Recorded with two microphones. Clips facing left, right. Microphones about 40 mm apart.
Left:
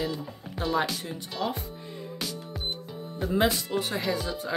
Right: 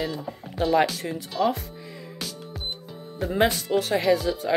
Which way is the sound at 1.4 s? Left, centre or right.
Right.